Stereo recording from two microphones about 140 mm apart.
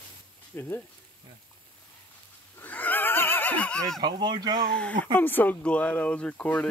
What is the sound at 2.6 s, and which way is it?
Neigh, 10° left (ahead or behind).